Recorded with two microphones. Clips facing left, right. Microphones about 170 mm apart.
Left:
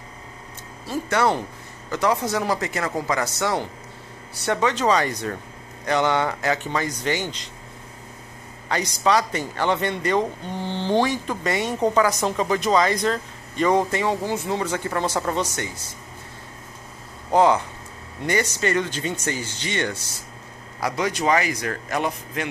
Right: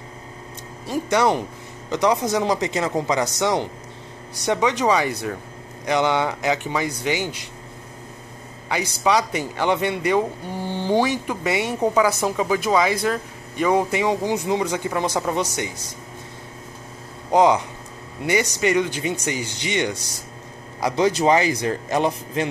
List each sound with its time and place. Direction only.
0.8 s a man's voice: 15° right (ahead or behind)
8.6 s a man's voice: 10° right (ahead or behind)
17.3 s a man's voice: 15° right (ahead or behind)
20.8 s speech: 30° right (ahead or behind)